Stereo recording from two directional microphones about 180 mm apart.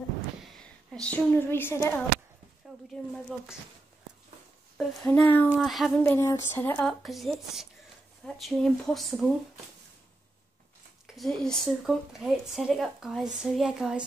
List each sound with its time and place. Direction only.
0.6 s speech: 5° left (ahead or behind)
2.6 s a sound: centre (ahead or behind)
4.7 s speech: 5° left (ahead or behind)
6.1 s speech: 15° left (ahead or behind); by 9.3 s centre (ahead or behind)
11.1 s speech: centre (ahead or behind)